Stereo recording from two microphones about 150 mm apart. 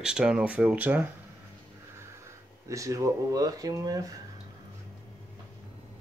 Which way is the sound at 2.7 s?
20° right (ahead or behind).